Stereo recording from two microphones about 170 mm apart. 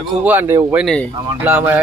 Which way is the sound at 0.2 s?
10° right (ahead or behind).